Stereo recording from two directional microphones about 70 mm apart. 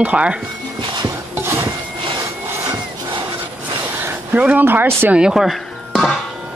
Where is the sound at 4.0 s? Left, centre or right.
Right.